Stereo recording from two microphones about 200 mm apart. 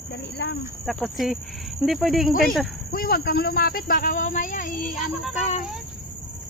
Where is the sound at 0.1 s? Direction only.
60° left (ahead or behind).